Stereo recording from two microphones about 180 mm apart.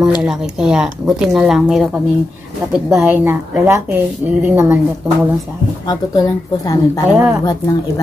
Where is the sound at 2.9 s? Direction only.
Centre (ahead or behind).